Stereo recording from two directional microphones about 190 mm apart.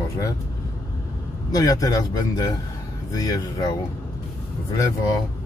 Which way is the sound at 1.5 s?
20° left (ahead or behind).